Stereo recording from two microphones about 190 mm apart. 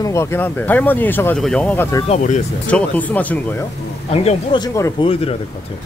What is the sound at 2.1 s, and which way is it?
Speech, 40° left (ahead or behind).